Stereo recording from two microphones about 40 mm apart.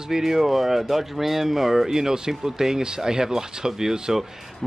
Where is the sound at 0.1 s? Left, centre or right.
Centre.